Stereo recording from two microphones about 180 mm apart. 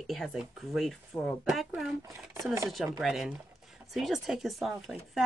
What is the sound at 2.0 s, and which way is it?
Speech, 15° right (ahead or behind).